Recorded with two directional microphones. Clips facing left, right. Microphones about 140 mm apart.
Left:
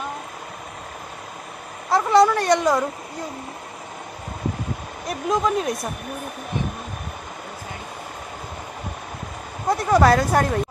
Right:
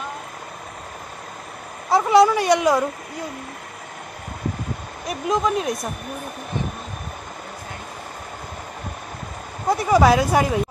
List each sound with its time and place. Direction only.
1.9 s speech: 10° right (ahead or behind)
5.0 s speech: centre (ahead or behind)
9.7 s speech: 5° right (ahead or behind)